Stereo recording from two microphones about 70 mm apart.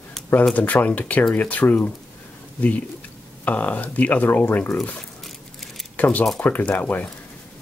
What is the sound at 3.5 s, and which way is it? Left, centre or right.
Speech, left.